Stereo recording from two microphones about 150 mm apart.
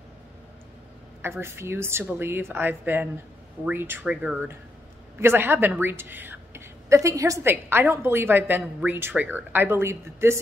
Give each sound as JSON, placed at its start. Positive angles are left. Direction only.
{"t": 1.2, "sound": "a woman's voice", "side_deg": -15}